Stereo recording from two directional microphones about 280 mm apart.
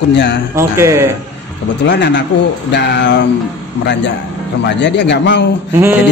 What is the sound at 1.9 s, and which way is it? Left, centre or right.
Speech, left.